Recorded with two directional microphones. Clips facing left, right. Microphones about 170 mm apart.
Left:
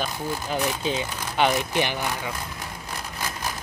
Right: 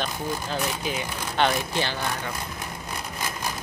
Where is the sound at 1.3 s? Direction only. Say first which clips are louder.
Left 2 dB; 15° left (ahead or behind).